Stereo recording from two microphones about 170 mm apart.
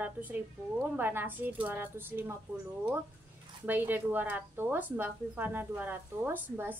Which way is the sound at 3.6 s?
10° right (ahead or behind).